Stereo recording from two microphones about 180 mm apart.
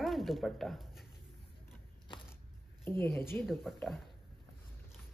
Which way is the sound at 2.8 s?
15° left (ahead or behind).